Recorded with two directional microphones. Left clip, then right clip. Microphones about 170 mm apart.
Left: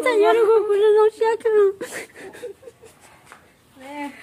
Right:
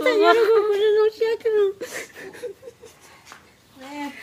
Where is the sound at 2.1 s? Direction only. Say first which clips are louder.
Right 1 dB; 35° left (ahead or behind).